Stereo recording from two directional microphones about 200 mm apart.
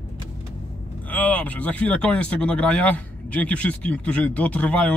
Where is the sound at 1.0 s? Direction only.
5° left (ahead or behind).